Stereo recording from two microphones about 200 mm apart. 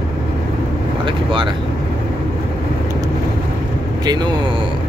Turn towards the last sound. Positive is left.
turn(degrees=-25)  # may be behind; listen again after turning